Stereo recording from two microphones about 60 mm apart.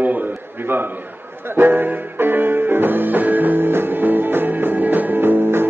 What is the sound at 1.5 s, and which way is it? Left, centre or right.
Music, right.